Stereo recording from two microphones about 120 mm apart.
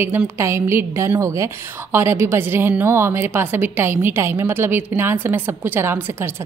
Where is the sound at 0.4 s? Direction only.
20° right (ahead or behind).